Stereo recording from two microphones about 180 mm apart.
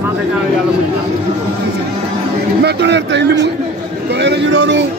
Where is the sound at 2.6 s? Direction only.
70° right (ahead or behind).